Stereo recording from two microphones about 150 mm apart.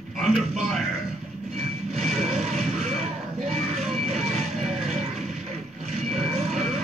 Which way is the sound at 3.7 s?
45° right (ahead or behind).